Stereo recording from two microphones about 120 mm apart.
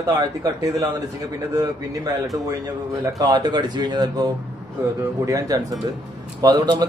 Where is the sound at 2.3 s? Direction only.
30° right (ahead or behind).